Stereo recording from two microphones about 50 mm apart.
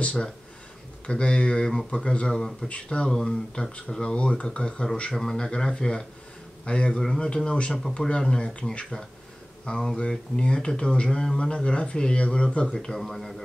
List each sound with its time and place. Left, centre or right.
1.0 s speech: left
2.7 s speech: left
5.1 s speech: centre